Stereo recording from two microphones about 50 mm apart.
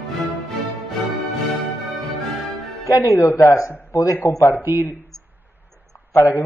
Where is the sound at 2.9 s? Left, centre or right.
Left.